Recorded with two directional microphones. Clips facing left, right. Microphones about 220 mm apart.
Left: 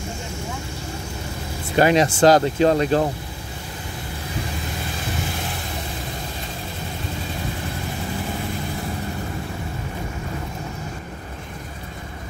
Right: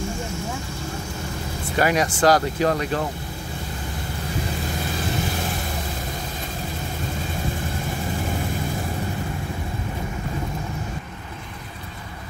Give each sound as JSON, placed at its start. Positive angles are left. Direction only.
{"t": 1.8, "sound": "speech", "side_deg": 25}